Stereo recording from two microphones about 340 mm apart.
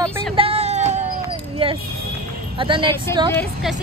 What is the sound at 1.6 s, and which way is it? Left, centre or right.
Speech, centre.